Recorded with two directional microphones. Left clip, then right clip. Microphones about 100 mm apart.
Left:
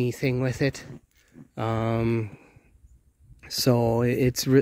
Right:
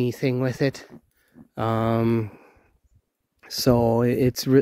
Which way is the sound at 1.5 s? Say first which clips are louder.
Right 4 dB; 45° right (ahead or behind).